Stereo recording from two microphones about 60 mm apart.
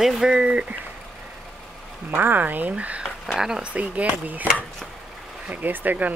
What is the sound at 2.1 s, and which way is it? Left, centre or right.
Speech, right.